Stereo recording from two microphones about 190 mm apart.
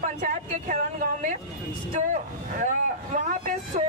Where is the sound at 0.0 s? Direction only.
40° right (ahead or behind).